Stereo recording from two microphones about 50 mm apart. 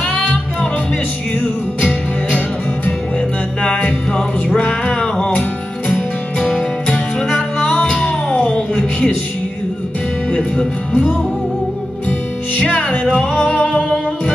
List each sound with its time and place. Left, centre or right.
0.1 s music: left
1.8 s music: left
3.6 s music: left
4.9 s music: centre
7.6 s music: centre
12.5 s music: left